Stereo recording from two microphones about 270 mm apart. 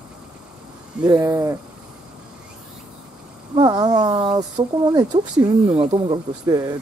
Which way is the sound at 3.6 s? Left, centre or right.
Centre.